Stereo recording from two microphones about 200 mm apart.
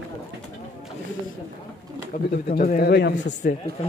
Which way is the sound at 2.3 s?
45° left (ahead or behind).